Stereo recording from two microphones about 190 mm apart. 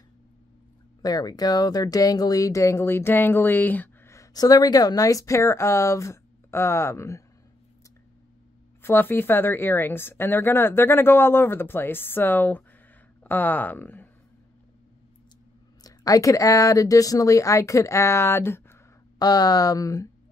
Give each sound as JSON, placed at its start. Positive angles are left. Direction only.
{"t": 1.0, "sound": "speech", "side_deg": 20}
{"t": 8.8, "sound": "speech", "side_deg": 10}
{"t": 15.8, "sound": "speech", "side_deg": 20}